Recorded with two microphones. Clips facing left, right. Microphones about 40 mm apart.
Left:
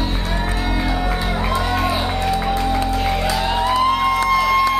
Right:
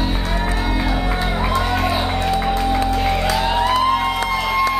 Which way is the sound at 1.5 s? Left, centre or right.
Centre.